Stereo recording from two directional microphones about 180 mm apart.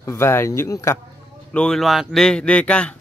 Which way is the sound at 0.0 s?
15° left (ahead or behind).